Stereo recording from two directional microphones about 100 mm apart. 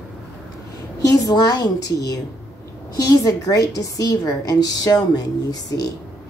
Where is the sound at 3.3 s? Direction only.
35° left (ahead or behind).